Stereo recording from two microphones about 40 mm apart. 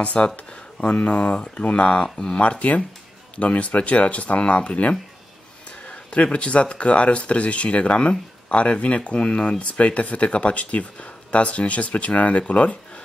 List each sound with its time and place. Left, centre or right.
0.0 s speech: left
2.4 s speech: left